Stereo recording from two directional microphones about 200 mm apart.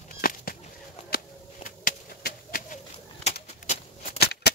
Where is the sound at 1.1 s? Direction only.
45° left (ahead or behind).